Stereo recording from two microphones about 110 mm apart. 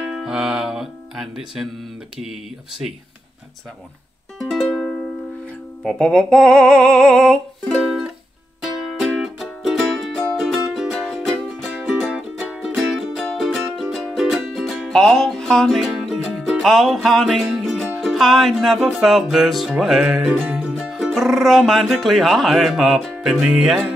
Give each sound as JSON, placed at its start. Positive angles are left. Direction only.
{"t": 0.0, "sound": "speech", "side_deg": -5}
{"t": 4.4, "sound": "music", "side_deg": 5}
{"t": 5.9, "sound": "speech", "side_deg": 5}
{"t": 8.6, "sound": "music", "side_deg": 0}
{"t": 12.4, "sound": "music", "side_deg": 0}
{"t": 19.7, "sound": "speech", "side_deg": -5}
{"t": 20.4, "sound": "music", "side_deg": -10}
{"t": 20.7, "sound": "speech", "side_deg": -5}
{"t": 23.1, "sound": "music", "side_deg": -5}